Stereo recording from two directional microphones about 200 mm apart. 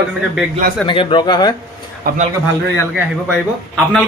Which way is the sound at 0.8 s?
25° left (ahead or behind).